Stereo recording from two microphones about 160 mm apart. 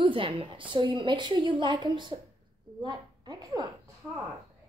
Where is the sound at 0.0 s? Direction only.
35° right (ahead or behind).